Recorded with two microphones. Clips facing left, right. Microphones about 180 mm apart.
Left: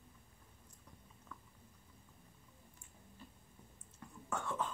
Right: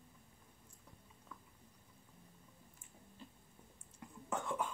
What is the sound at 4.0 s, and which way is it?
Whispering, 15° right (ahead or behind).